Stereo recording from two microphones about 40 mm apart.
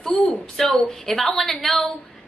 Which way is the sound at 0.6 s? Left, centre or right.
Centre.